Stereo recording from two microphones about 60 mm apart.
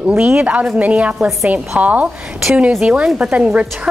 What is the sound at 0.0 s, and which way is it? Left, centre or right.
Speech, centre.